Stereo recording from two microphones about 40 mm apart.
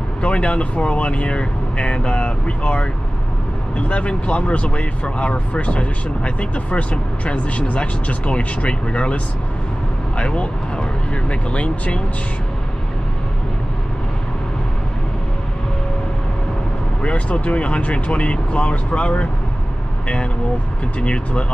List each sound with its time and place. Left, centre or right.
0.2 s speech: left
17.0 s speech: left
21.0 s speech: left